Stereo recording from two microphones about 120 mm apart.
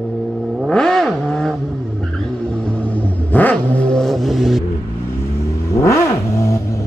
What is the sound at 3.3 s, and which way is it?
Vehicle, 15° left (ahead or behind).